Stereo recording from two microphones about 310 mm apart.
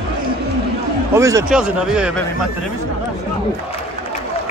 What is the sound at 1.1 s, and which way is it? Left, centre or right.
Speech, centre.